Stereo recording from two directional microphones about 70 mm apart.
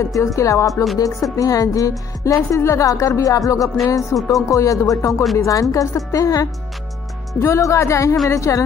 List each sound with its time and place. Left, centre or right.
0.0 s speech: left
7.3 s speech: left